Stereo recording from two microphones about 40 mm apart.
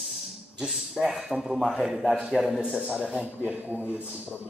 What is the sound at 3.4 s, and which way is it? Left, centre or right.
Speech, right.